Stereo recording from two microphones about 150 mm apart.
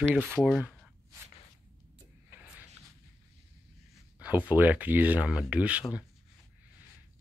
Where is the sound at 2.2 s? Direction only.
10° right (ahead or behind).